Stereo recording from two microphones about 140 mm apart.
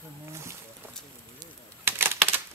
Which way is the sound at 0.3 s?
20° right (ahead or behind).